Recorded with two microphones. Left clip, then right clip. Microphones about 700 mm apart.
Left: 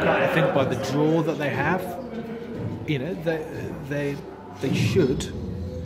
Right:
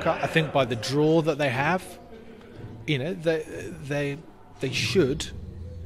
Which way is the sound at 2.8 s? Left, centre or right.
Right.